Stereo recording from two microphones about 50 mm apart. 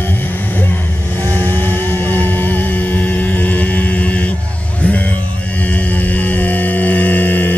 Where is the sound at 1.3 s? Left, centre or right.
Left.